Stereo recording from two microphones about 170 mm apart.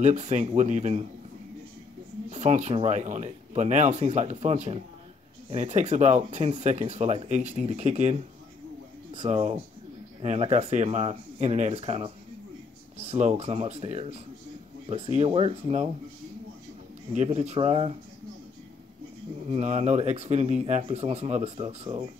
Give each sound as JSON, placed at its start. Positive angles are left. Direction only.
{"t": 0.0, "sound": "speech", "side_deg": -40}
{"t": 2.3, "sound": "speech", "side_deg": -40}
{"t": 9.2, "sound": "speech", "side_deg": -40}
{"t": 13.1, "sound": "speech", "side_deg": -40}
{"t": 17.1, "sound": "speech", "side_deg": -40}
{"t": 19.4, "sound": "speech", "side_deg": -40}